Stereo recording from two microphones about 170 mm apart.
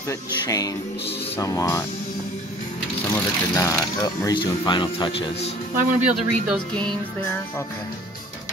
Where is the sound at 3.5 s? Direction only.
20° left (ahead or behind); by 5.5 s 35° left (ahead or behind).